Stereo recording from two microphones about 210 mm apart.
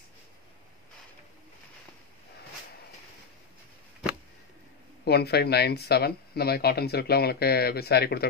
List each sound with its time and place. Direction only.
5.0 s speech: 50° left (ahead or behind)